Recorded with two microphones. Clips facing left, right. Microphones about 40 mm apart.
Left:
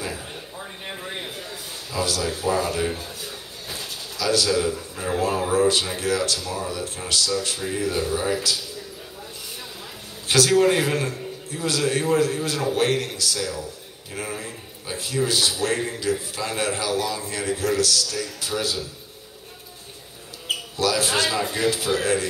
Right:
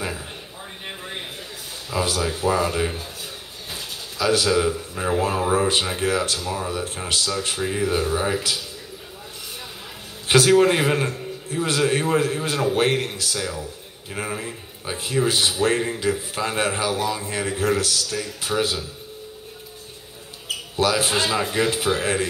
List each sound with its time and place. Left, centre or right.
0.8 s a sound: centre
1.9 s a man's voice: right
4.2 s a man's voice: right
10.2 s a man's voice: right
20.7 s a man's voice: right